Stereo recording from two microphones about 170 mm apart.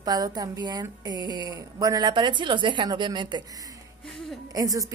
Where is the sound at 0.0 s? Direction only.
20° right (ahead or behind).